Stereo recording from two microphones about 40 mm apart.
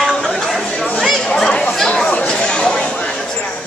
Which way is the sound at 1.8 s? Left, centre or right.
Centre.